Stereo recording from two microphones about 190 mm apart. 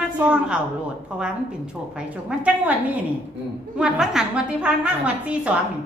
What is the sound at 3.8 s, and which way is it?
A woman's voice, 5° right (ahead or behind).